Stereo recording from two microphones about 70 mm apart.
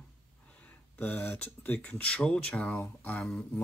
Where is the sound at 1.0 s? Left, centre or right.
Left.